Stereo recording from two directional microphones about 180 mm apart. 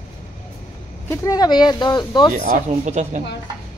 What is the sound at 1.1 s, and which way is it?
Speech, 20° left (ahead or behind).